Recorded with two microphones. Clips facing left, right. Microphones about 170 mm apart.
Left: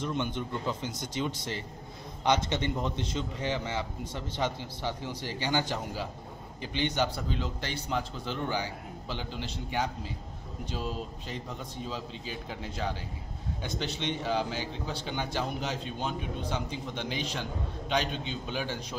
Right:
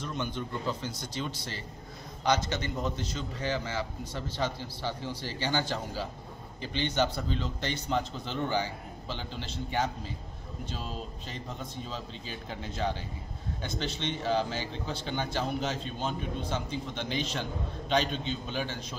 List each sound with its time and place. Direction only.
0.0 s a man's voice: 20° left (ahead or behind)
11.9 s a man's voice: 10° left (ahead or behind)